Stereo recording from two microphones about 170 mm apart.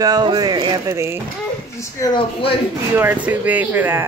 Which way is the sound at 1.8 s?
20° left (ahead or behind).